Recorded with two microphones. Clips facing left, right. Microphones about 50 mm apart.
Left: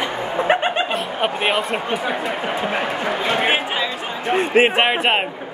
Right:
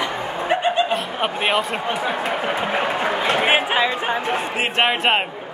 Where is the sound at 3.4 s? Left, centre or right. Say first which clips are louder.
Right 2 dB; centre.